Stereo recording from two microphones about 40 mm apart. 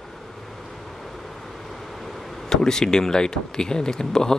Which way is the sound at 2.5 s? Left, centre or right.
Centre.